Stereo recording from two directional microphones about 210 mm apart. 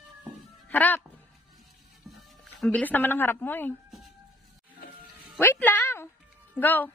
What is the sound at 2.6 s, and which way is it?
Speech, 5° left (ahead or behind).